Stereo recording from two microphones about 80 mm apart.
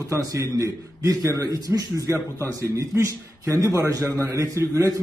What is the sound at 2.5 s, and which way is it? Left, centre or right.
A man's voice, right.